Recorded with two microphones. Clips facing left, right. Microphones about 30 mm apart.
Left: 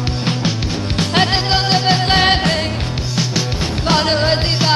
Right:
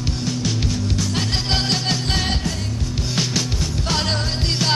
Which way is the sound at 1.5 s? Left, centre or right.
Left.